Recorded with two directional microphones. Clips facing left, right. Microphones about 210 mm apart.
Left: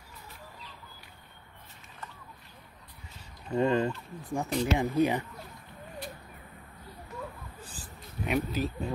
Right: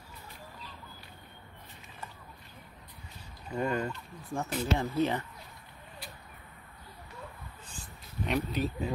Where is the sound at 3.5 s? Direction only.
25° left (ahead or behind).